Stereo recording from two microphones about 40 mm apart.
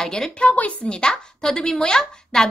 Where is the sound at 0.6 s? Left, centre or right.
Left.